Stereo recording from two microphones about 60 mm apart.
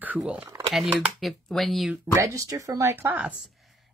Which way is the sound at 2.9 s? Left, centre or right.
Right.